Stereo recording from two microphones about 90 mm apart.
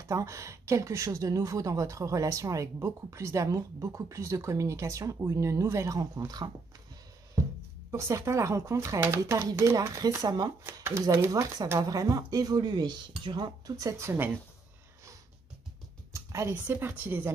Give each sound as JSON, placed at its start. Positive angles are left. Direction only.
{"t": 0.0, "sound": "a woman's voice", "side_deg": -35}
{"t": 7.9, "sound": "a woman's voice", "side_deg": -35}
{"t": 10.6, "sound": "a woman's voice", "side_deg": -30}
{"t": 16.1, "sound": "a sound", "side_deg": -35}
{"t": 16.6, "sound": "speech", "side_deg": -20}